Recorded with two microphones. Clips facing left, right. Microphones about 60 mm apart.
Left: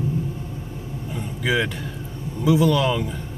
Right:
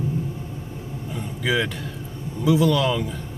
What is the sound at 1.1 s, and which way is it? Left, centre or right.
Vehicle, centre.